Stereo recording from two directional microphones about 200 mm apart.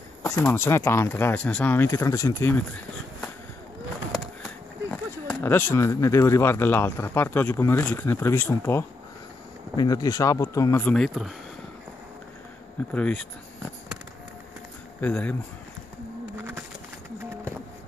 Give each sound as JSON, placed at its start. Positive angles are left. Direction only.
{"t": 0.2, "sound": "speech", "side_deg": 10}
{"t": 4.9, "sound": "speech", "side_deg": 10}
{"t": 12.9, "sound": "speech", "side_deg": 5}
{"t": 15.0, "sound": "speech", "side_deg": 5}
{"t": 16.3, "sound": "a sound", "side_deg": -15}